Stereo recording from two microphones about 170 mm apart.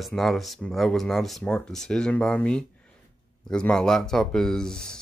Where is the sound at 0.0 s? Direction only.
Centre (ahead or behind).